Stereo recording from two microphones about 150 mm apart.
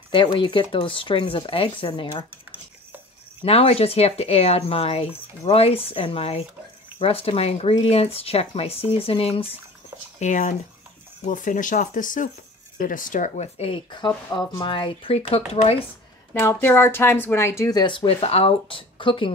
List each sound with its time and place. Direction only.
0.1 s speech: 35° left (ahead or behind)
3.4 s speech: 40° left (ahead or behind)
10.1 s speech: 55° left (ahead or behind)
13.6 s speech: 35° left (ahead or behind)
16.3 s speech: 15° left (ahead or behind); by 19.3 s 35° left (ahead or behind)